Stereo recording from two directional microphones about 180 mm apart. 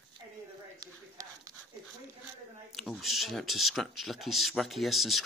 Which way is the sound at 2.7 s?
Centre (ahead or behind).